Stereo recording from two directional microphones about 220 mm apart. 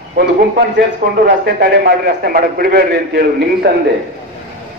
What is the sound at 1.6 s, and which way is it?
A man's voice, 45° right (ahead or behind).